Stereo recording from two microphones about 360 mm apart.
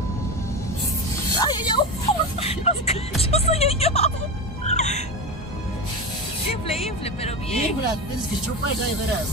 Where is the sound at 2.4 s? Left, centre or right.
Centre.